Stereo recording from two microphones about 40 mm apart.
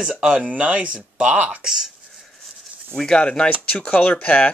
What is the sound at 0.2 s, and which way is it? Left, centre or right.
Speech, right.